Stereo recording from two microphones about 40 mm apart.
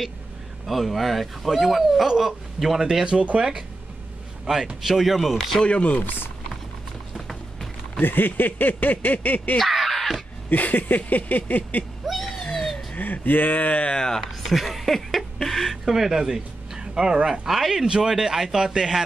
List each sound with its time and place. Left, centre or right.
0.7 s a man's voice: centre
3.1 s speech: right
4.5 s speech: right
4.8 s speech: centre
5.6 s speech: left
8.0 s speech: left
9.6 s crow: centre
10.5 s speech: left
12.0 s cat: centre
12.9 s speech: left
13.9 s speech: centre
14.5 s a man's voice: centre
17.8 s a man's voice: centre